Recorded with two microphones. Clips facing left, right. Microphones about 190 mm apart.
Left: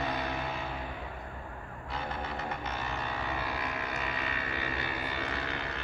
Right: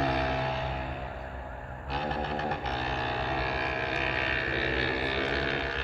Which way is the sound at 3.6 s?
65° right (ahead or behind).